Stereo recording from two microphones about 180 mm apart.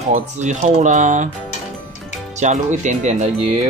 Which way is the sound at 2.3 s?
40° right (ahead or behind).